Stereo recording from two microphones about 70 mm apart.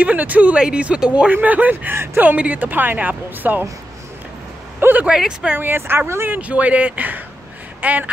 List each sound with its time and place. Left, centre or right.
0.0 s speech: right
4.7 s vehicle: right
5.0 s speech: centre
5.6 s speech: right
6.3 s speech: right